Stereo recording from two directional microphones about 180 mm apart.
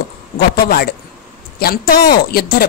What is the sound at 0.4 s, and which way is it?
A woman's voice, 55° left (ahead or behind).